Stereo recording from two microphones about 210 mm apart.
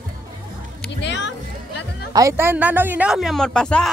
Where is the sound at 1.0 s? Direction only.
55° left (ahead or behind).